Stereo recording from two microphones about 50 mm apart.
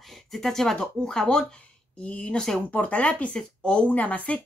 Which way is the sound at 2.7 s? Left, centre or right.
Left.